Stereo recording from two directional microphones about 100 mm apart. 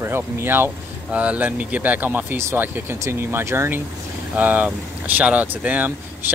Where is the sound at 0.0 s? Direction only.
25° right (ahead or behind).